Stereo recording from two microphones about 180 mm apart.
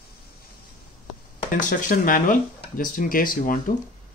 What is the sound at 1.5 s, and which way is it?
Speech, 45° left (ahead or behind).